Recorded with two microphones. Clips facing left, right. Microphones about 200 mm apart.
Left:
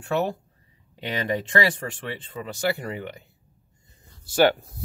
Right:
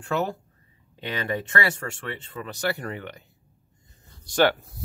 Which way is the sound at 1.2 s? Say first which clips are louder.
Left 3 dB; 20° left (ahead or behind).